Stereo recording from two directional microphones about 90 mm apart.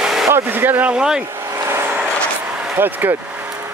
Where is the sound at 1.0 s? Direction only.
10° right (ahead or behind).